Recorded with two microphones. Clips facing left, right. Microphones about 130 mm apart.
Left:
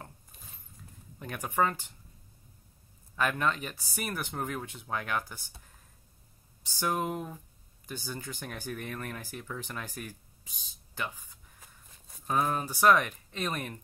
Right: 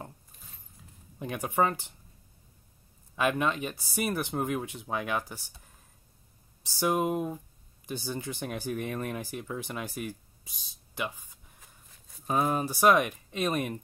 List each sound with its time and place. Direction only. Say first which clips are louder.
1.2 s speech: right 2 dB; 15° right (ahead or behind)
3.2 s speech: right 2 dB; 15° right (ahead or behind)
6.8 s speech: right 4 dB; 15° right (ahead or behind)
12.3 s speech: right 2 dB; 15° right (ahead or behind)